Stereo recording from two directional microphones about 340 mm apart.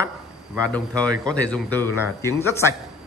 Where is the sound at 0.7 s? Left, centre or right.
Centre.